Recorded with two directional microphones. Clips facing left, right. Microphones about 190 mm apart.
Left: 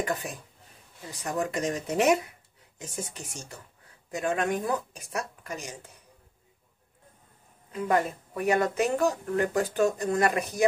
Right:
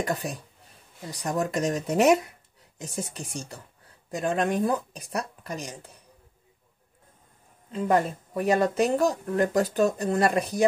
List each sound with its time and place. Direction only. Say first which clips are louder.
0.0 s speech: right 2 dB; 35° right (ahead or behind)
4.1 s speech: right 2 dB; 30° right (ahead or behind)
7.7 s speech: right 2 dB; 30° right (ahead or behind)